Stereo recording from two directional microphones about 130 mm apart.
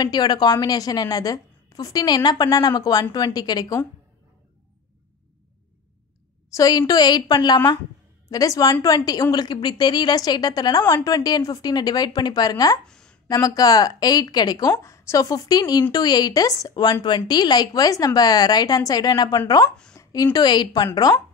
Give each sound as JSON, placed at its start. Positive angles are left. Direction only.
{"t": 0.0, "sound": "a woman's voice", "side_deg": 30}
{"t": 6.5, "sound": "a woman's voice", "side_deg": 30}
{"t": 12.8, "sound": "a sound", "side_deg": 5}
{"t": 13.3, "sound": "a woman's voice", "side_deg": 25}
{"t": 20.0, "sound": "a sound", "side_deg": 25}
{"t": 20.3, "sound": "a woman's voice", "side_deg": 35}